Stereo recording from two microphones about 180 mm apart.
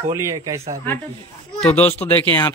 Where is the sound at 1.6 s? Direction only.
10° left (ahead or behind).